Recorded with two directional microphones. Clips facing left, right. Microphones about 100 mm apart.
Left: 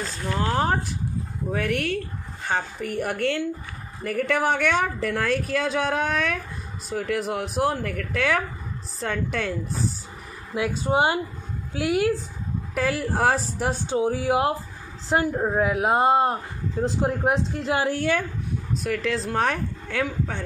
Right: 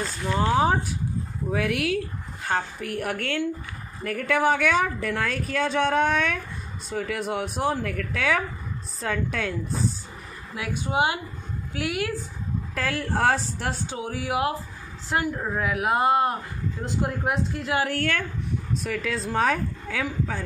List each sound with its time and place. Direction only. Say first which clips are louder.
0.0 s a woman's voice: right 2 dB; centre (ahead or behind)
10.8 s a woman's voice: left 2 dB; 35° left (ahead or behind)
12.7 s a woman's voice: left 3 dB; 5° left (ahead or behind)
13.8 s a woman's voice: left 7 dB; 30° left (ahead or behind)
17.9 s speech: left 3 dB; 15° left (ahead or behind)
18.7 s a woman's voice: left 4 dB; centre (ahead or behind)